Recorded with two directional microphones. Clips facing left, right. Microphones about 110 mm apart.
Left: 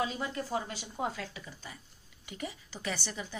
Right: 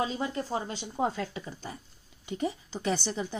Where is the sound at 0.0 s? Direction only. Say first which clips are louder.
Right 3 dB; 30° right (ahead or behind).